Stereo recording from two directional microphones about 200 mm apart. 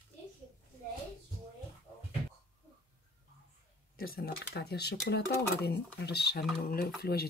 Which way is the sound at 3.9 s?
45° left (ahead or behind).